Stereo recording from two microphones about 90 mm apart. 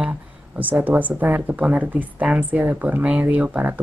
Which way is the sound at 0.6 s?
20° right (ahead or behind).